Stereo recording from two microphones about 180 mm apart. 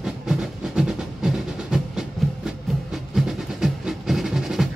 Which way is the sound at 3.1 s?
Centre (ahead or behind).